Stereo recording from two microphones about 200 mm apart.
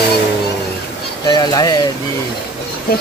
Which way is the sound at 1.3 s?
20° left (ahead or behind).